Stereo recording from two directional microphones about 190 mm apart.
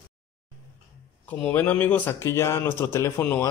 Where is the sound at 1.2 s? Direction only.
10° left (ahead or behind).